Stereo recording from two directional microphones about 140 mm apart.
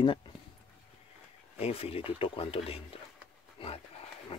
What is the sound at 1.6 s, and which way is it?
Speech, 45° left (ahead or behind).